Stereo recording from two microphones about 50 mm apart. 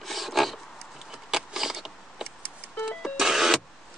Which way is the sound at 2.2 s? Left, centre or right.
Centre.